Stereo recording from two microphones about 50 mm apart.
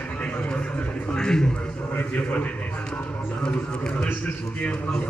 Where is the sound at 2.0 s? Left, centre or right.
Left.